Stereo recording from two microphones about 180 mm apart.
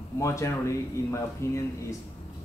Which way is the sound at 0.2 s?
15° left (ahead or behind).